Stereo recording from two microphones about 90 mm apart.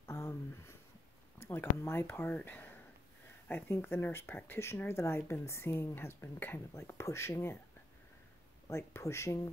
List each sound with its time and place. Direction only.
0.0 s a sound: 30° left (ahead or behind)
1.4 s a woman's voice: 25° left (ahead or behind)
8.6 s speech: 30° left (ahead or behind)